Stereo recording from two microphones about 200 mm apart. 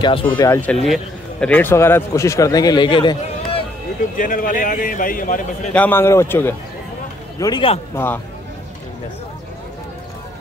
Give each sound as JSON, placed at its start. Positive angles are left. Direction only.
{"t": 0.0, "sound": "a man's voice", "side_deg": 25}
{"t": 0.4, "sound": "a man's voice", "side_deg": 10}
{"t": 4.2, "sound": "a man's voice", "side_deg": 45}
{"t": 5.7, "sound": "a man's voice", "side_deg": 10}
{"t": 7.9, "sound": "a man's voice", "side_deg": 10}